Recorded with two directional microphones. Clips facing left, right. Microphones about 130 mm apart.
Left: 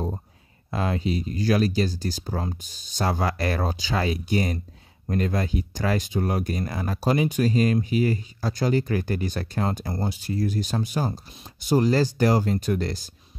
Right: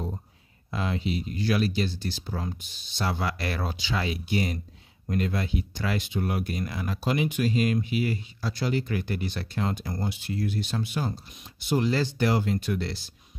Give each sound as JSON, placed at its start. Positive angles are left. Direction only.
{"t": 0.7, "sound": "speech", "side_deg": 45}